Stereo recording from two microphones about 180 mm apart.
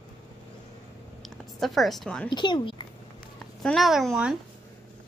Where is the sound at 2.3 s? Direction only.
25° left (ahead or behind).